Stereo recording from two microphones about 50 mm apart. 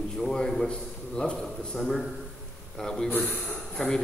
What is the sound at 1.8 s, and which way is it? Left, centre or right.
A man's voice, centre.